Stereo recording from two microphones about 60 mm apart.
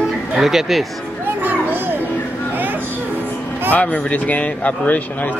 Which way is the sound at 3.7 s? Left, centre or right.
Left.